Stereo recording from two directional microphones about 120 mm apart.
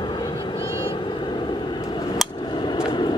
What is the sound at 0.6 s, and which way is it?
Vehicle, 50° left (ahead or behind).